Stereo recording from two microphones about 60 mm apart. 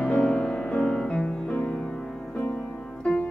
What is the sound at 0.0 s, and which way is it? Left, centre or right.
Music, centre.